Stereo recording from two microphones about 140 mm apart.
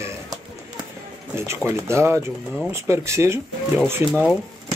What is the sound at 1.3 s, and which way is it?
Speech, 20° right (ahead or behind).